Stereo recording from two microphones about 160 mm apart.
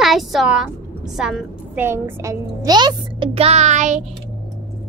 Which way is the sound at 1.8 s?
15° right (ahead or behind).